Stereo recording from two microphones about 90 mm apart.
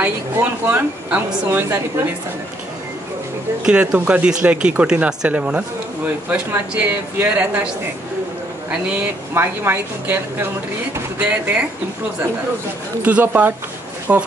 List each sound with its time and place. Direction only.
0.4 s speech: 20° right (ahead or behind)
3.6 s speech: 10° right (ahead or behind)
6.7 s speech: 20° right (ahead or behind)
8.6 s speech: 15° right (ahead or behind)
13.0 s speech: 20° right (ahead or behind)